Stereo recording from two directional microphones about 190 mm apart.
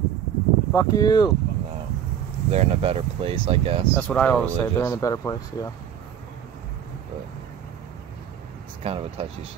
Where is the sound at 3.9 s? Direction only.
10° left (ahead or behind).